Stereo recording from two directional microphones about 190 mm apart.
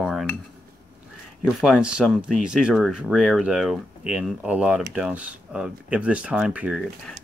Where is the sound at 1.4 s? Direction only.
Centre (ahead or behind).